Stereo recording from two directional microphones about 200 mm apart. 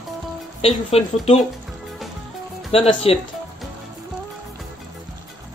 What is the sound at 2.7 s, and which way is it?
Speech, 30° left (ahead or behind).